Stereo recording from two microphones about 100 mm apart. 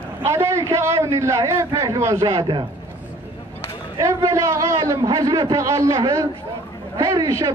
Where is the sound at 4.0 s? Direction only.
35° right (ahead or behind).